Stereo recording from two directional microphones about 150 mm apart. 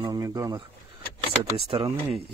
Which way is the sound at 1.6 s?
40° right (ahead or behind).